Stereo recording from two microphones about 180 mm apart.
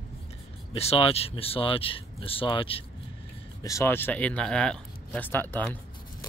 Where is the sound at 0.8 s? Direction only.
35° left (ahead or behind).